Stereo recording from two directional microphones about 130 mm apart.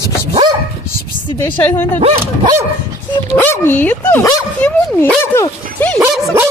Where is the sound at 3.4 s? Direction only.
15° left (ahead or behind).